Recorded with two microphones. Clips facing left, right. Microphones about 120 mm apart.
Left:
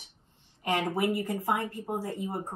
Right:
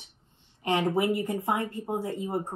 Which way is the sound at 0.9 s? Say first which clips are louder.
Right 2 dB; 20° right (ahead or behind).